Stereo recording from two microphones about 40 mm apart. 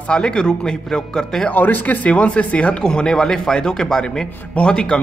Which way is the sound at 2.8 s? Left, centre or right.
Centre.